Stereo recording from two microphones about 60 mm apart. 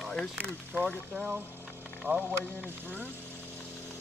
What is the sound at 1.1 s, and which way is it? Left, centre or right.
Speech, right.